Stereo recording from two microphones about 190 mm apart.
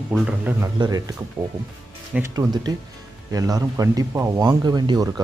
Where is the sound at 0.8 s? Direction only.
20° right (ahead or behind).